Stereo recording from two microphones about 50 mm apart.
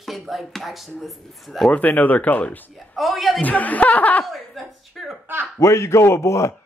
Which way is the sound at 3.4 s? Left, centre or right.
Left.